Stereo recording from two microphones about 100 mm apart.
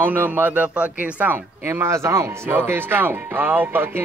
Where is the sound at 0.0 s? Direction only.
20° right (ahead or behind).